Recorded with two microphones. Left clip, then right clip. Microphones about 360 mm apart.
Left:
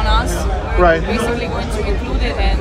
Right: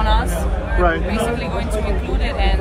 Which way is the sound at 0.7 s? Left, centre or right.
Left.